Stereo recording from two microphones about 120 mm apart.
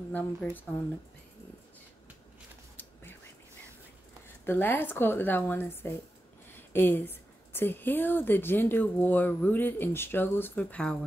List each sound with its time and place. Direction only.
0.1 s a woman's voice: 15° left (ahead or behind)
2.8 s whispering: 15° left (ahead or behind)
4.5 s a woman's voice: 15° left (ahead or behind)